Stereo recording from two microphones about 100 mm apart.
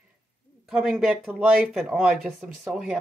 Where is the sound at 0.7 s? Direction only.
Centre (ahead or behind).